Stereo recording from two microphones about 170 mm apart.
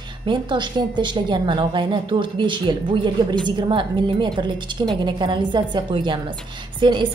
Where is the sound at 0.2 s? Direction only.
25° right (ahead or behind).